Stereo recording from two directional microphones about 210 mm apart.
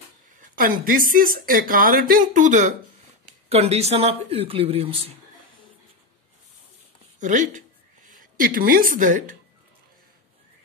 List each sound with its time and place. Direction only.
0.4 s speech: 40° right (ahead or behind)
7.2 s speech: 35° right (ahead or behind)